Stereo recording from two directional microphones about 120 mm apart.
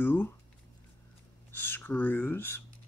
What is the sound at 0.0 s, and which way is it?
Speech, 15° left (ahead or behind).